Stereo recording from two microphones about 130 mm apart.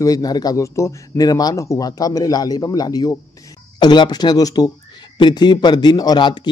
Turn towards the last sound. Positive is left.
turn(degrees=35)  # may be behind; listen again after turning